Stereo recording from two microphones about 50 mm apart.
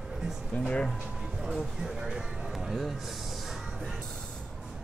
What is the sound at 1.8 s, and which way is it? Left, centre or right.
Speech, centre.